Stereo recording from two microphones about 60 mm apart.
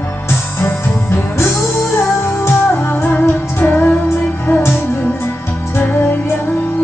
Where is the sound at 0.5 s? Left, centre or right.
Left.